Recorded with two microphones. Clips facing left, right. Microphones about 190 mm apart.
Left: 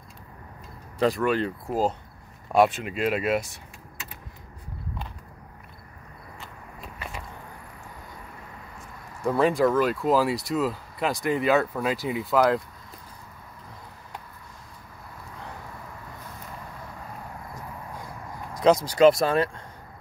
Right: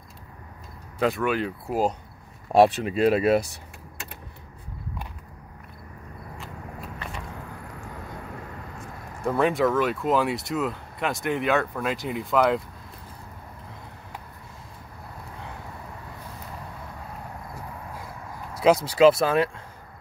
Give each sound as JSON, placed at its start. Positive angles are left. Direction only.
{"t": 0.9, "sound": "speech", "side_deg": 0}
{"t": 2.5, "sound": "speech", "side_deg": -35}
{"t": 6.4, "sound": "walk", "side_deg": 0}
{"t": 9.2, "sound": "speech", "side_deg": 0}
{"t": 17.9, "sound": "a sound", "side_deg": -5}
{"t": 18.9, "sound": "speech", "side_deg": -5}